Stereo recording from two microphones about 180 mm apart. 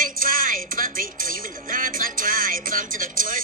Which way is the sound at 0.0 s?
50° right (ahead or behind).